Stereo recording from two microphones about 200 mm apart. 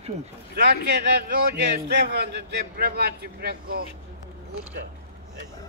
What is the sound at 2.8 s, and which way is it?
Speech, 50° right (ahead or behind).